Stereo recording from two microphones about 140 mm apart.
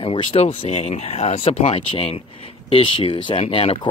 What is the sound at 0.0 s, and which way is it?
Speech, 45° left (ahead or behind).